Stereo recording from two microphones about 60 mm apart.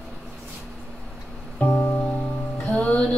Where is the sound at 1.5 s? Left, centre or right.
Left.